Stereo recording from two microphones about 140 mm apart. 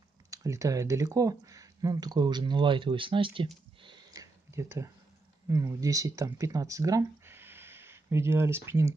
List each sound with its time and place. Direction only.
0.3 s speech: 25° right (ahead or behind)
3.8 s a sound: 25° right (ahead or behind)
5.5 s speech: 25° right (ahead or behind)